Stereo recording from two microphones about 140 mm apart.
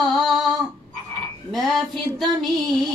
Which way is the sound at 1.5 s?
Centre (ahead or behind).